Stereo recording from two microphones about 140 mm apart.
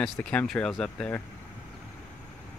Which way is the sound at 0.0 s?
5° left (ahead or behind).